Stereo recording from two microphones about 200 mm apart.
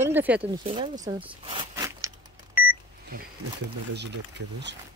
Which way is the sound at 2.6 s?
10° right (ahead or behind).